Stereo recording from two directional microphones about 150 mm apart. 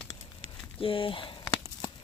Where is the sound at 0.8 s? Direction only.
35° left (ahead or behind).